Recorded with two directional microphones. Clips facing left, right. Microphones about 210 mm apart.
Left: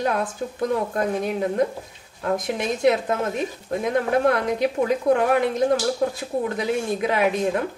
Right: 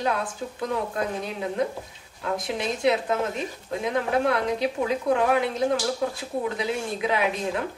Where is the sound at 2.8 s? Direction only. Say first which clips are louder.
Left 3 dB; 50° left (ahead or behind).